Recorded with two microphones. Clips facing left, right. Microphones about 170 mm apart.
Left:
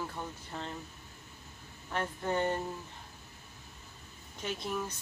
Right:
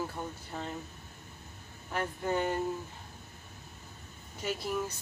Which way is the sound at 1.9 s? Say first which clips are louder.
Right 1 dB; 10° right (ahead or behind).